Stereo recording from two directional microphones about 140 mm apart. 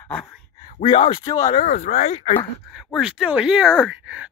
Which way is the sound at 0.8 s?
45° left (ahead or behind).